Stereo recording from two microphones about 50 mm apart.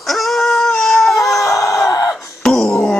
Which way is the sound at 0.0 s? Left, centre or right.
Centre.